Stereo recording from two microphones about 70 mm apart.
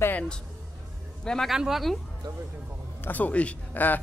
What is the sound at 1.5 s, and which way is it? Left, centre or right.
Speech, centre.